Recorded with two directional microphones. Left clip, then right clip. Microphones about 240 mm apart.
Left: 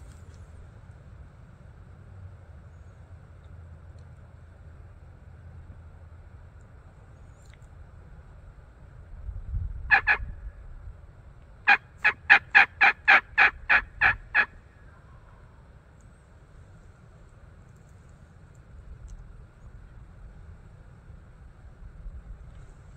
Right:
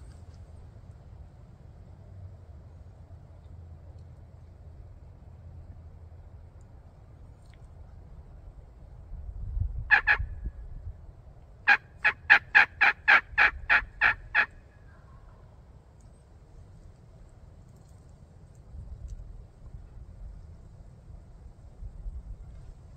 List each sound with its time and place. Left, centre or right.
9.8 s fowl: left
11.6 s fowl: left